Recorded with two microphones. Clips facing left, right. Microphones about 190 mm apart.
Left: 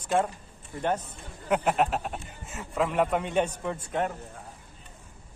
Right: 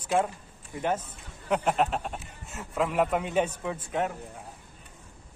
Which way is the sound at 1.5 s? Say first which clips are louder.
Left 1 dB; centre (ahead or behind).